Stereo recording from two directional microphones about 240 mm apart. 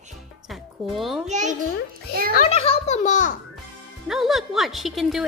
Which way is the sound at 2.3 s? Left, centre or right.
Left.